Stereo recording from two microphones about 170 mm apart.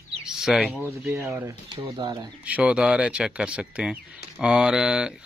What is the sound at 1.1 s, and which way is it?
Speech, 15° right (ahead or behind).